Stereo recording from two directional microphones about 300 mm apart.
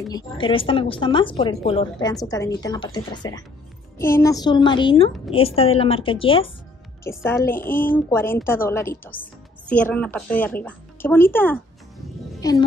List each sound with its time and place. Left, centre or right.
0.1 s a woman's voice: centre